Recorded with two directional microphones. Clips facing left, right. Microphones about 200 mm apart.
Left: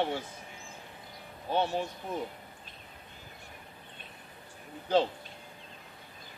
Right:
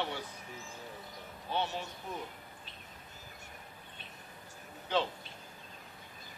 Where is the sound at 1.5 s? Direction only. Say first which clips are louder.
Left 6 dB; 45° left (ahead or behind).